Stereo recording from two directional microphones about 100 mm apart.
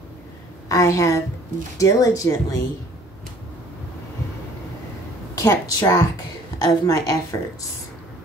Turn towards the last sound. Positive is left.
turn(degrees=35)  # may be behind; listen again after turning